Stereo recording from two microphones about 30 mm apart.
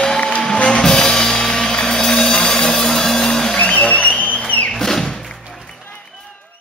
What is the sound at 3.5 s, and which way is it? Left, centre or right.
Music, left.